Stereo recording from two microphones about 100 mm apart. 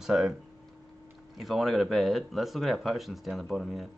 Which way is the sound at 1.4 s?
Centre (ahead or behind).